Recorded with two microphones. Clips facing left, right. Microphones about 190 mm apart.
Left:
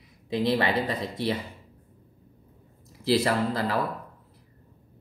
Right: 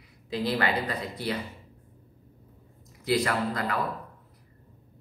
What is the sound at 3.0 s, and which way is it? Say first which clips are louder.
Speech: left 3 dB; 30° left (ahead or behind).